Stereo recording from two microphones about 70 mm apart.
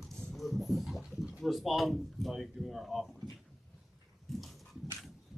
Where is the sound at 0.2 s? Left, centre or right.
Centre.